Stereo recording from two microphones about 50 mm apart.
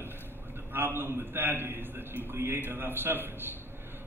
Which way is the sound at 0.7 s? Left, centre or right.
Right.